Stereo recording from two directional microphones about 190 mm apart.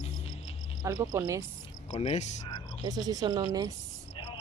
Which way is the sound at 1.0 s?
20° right (ahead or behind).